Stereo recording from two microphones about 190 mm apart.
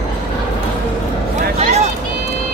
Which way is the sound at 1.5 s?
35° right (ahead or behind).